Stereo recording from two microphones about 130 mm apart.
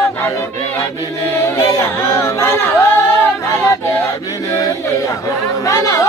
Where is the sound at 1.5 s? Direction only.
25° left (ahead or behind).